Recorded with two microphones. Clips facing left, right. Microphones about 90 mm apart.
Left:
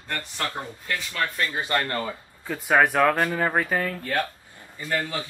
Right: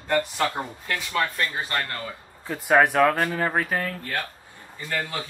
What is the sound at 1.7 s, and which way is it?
Speech, 30° left (ahead or behind).